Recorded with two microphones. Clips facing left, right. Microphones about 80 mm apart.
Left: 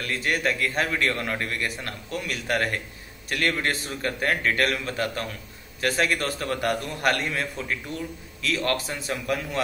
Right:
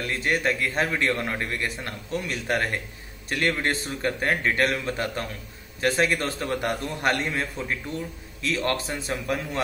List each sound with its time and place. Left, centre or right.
0.0 s a man's voice: right